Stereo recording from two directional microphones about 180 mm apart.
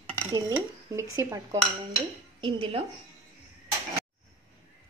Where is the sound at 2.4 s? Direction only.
30° right (ahead or behind).